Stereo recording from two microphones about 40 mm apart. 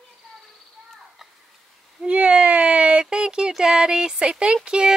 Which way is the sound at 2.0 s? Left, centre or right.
Right.